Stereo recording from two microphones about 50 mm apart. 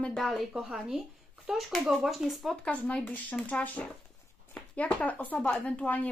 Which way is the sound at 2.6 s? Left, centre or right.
Left.